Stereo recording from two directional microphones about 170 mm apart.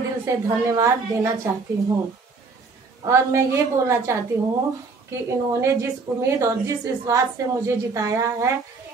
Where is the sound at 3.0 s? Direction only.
15° right (ahead or behind).